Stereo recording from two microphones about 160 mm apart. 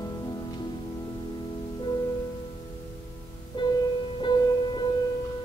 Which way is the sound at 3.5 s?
30° left (ahead or behind).